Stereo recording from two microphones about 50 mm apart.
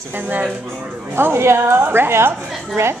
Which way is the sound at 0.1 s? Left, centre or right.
Right.